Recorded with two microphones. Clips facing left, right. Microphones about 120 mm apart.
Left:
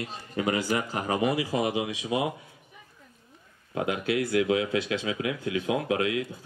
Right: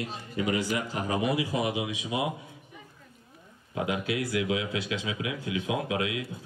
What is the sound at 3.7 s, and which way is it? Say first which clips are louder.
Speech: left 2 dB; 50° left (ahead or behind).